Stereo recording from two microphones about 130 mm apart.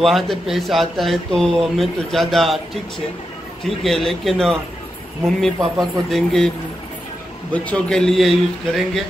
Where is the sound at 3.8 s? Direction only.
Centre (ahead or behind).